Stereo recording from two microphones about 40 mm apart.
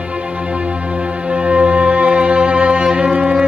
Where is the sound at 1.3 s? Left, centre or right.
Right.